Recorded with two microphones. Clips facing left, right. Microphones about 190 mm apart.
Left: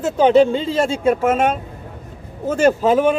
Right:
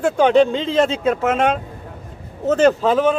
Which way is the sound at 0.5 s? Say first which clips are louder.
Right 1 dB; 5° left (ahead or behind).